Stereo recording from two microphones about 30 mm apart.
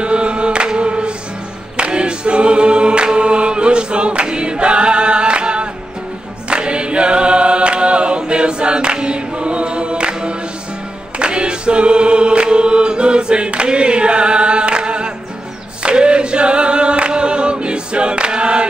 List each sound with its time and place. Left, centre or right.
0.0 s music: right
1.8 s choir: right